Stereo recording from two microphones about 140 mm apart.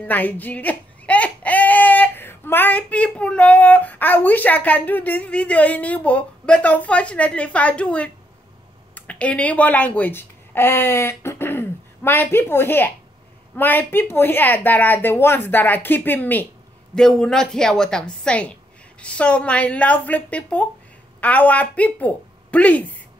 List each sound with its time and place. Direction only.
0.0 s a woman's voice: 10° left (ahead or behind)